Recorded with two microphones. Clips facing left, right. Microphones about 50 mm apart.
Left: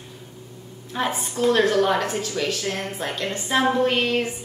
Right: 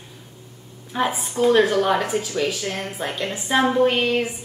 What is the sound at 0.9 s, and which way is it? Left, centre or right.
A woman's voice, centre.